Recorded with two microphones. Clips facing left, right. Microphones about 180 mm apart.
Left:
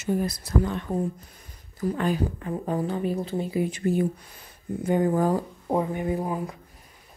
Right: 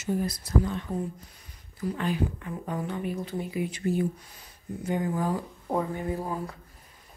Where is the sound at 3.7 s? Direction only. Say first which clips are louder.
Left 3 dB; 55° left (ahead or behind).